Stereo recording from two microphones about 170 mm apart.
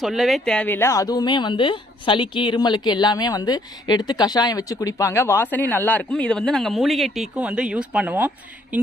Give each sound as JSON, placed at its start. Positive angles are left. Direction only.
{"t": 0.0, "sound": "speech", "side_deg": 0}